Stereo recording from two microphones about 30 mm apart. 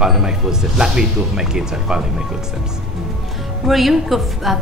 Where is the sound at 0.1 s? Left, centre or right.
Centre.